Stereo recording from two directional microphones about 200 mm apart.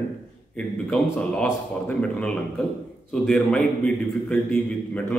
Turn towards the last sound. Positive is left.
turn(degrees=5)  # may be behind; listen again after turning